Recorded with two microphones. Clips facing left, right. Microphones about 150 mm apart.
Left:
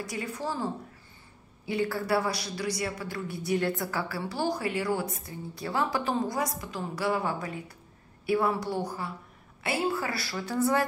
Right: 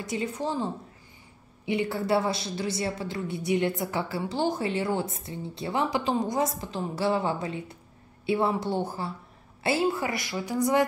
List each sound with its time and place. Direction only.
0.0 s a woman's voice: 20° right (ahead or behind)
1.7 s a woman's voice: 20° right (ahead or behind)